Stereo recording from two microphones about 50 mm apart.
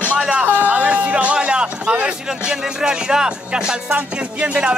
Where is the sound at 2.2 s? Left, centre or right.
Centre.